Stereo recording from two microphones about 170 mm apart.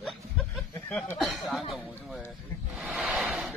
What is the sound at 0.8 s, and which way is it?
Speech, 10° left (ahead or behind).